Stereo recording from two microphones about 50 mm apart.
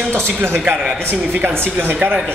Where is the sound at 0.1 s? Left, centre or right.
Right.